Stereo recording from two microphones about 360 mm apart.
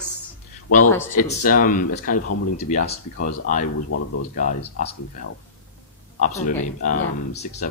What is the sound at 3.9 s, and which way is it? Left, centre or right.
Speech, left.